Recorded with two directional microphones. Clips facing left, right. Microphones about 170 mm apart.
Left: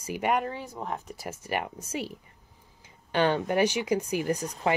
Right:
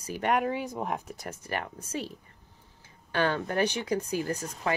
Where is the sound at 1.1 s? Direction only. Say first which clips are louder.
Left 3 dB; 10° left (ahead or behind).